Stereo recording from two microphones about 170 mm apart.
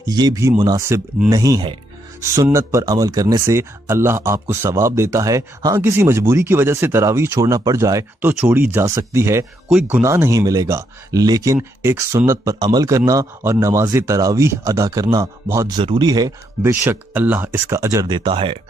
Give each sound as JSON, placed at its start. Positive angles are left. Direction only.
{"t": 0.0, "sound": "speech", "side_deg": -25}